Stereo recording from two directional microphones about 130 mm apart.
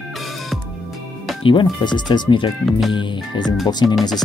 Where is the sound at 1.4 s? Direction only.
40° left (ahead or behind).